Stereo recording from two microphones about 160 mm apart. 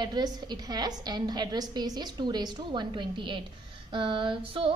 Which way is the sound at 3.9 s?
35° right (ahead or behind).